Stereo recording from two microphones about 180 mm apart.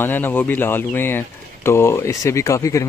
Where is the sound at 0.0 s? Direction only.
10° left (ahead or behind).